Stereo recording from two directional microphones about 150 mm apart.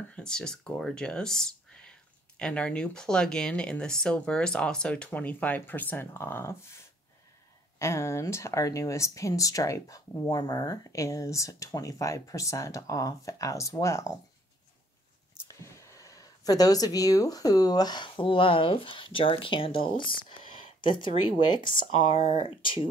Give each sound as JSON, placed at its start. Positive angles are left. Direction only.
{"t": 0.1, "sound": "speech", "side_deg": 5}
{"t": 7.8, "sound": "speech", "side_deg": 20}
{"t": 15.6, "sound": "speech", "side_deg": 20}